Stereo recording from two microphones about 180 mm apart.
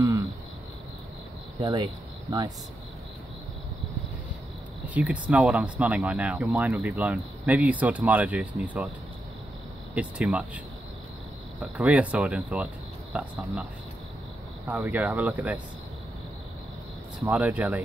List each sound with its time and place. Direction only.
1.6 s speech: 25° right (ahead or behind)
4.8 s speech: 10° right (ahead or behind)
9.9 s speech: 5° right (ahead or behind)
11.6 s speech: 5° right (ahead or behind)
14.7 s speech: 10° right (ahead or behind)
17.2 s speech: 10° right (ahead or behind)